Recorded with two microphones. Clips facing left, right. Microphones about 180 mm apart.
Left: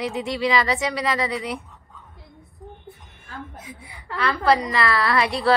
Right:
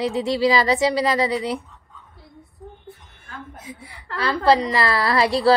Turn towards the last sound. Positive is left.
turn(degrees=-30)  # may be behind; listen again after turning